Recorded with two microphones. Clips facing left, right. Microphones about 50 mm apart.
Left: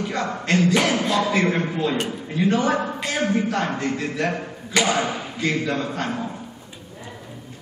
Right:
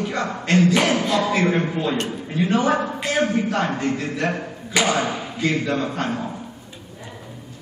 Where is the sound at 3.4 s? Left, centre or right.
Centre.